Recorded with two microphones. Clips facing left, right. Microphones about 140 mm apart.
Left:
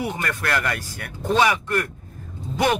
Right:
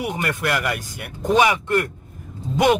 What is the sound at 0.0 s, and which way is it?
A man's voice, 15° right (ahead or behind).